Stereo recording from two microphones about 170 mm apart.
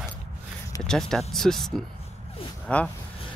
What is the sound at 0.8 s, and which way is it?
Speech, 5° left (ahead or behind).